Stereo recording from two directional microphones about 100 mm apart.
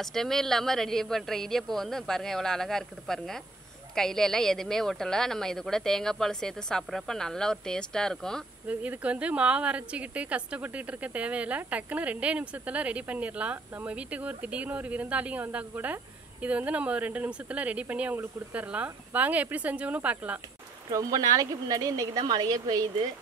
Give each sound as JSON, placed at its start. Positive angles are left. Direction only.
{"t": 0.0, "sound": "speech", "side_deg": 5}
{"t": 8.6, "sound": "a woman's voice", "side_deg": -15}
{"t": 20.9, "sound": "speech", "side_deg": -40}